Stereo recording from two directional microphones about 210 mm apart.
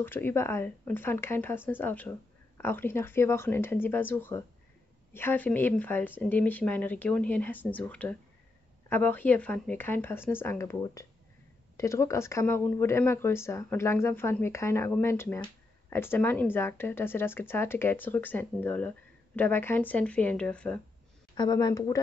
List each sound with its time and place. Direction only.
0.0 s speech: 10° left (ahead or behind)
21.4 s speech: 20° left (ahead or behind)